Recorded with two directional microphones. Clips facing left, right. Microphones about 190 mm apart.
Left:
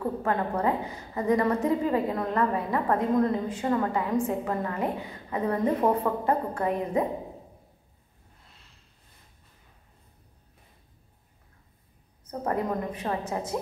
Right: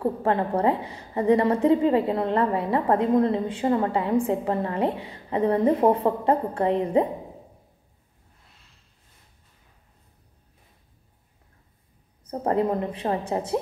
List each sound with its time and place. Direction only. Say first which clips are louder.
0.0 s a woman's voice: right 4 dB; 30° right (ahead or behind)
12.3 s a woman's voice: right 5 dB; 30° right (ahead or behind)